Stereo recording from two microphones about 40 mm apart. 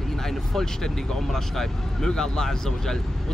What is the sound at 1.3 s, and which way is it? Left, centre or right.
Speech, centre.